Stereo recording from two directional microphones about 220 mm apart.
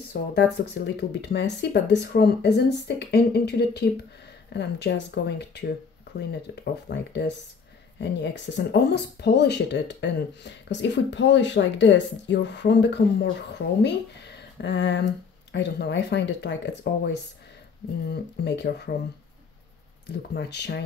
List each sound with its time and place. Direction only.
0.1 s speech: 50° left (ahead or behind)
20.1 s speech: 50° left (ahead or behind)